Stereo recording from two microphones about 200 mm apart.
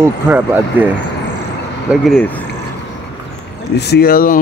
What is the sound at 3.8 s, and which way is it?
Speech, 55° left (ahead or behind).